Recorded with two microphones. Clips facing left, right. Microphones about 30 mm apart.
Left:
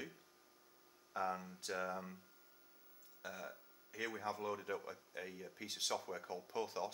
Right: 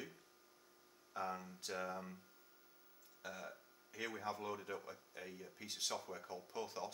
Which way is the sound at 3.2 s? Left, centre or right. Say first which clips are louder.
Left 1 dB; centre.